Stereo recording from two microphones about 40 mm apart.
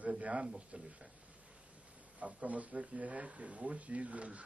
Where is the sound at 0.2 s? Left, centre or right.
Right.